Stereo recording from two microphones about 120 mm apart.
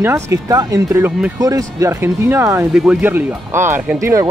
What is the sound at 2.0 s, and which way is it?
Speech, 20° right (ahead or behind).